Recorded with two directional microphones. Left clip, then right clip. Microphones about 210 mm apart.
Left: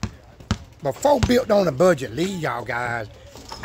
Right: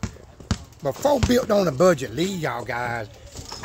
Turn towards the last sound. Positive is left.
turn(degrees=0)  # may be behind; listen again after turning